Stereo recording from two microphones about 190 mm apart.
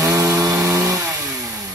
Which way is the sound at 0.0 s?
15° right (ahead or behind).